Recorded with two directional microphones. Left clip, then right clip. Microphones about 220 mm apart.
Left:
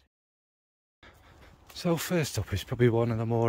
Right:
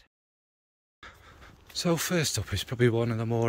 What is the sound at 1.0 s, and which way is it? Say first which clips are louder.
Dog: right 7 dB; 5° left (ahead or behind).